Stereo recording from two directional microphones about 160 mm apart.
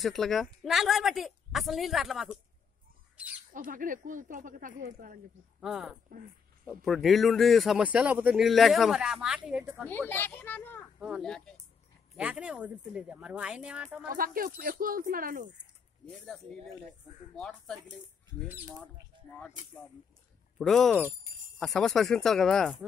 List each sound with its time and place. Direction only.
0.0 s a man's voice: centre (ahead or behind)
3.5 s speech: 60° right (ahead or behind)
5.6 s a man's voice: 5° right (ahead or behind)
9.8 s a child's voice: 15° left (ahead or behind)
11.0 s a man's voice: centre (ahead or behind)
12.2 s speech: 5° right (ahead or behind)
14.1 s speech: 60° right (ahead or behind)
16.1 s a man's voice: 5° left (ahead or behind)
20.5 s a man's voice: centre (ahead or behind)